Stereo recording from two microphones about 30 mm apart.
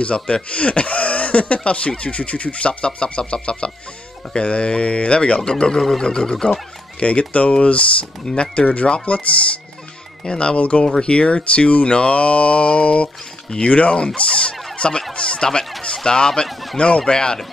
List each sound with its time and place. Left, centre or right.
0.0 s speech: left
4.4 s speech: left
5.4 s speech: left
7.0 s speech: left
10.2 s speech: left
13.9 s speech: left
14.8 s a sound: left
15.9 s speech: left
16.7 s speech: left
17.0 s speech: left